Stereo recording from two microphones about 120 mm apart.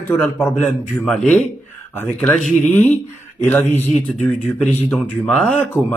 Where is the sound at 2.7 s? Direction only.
15° left (ahead or behind).